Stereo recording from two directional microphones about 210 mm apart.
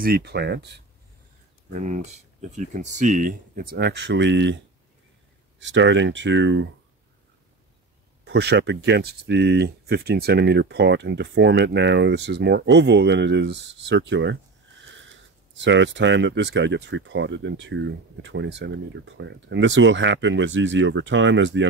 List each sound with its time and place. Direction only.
0.0 s speech: 50° right (ahead or behind)
1.7 s speech: 35° right (ahead or behind); by 6.7 s 60° right (ahead or behind)
8.3 s speech: 55° right (ahead or behind)